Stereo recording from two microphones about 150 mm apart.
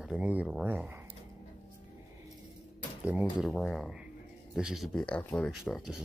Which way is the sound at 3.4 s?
5° left (ahead or behind).